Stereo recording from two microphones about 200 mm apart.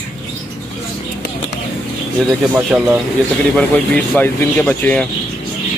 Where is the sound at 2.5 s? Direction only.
10° right (ahead or behind).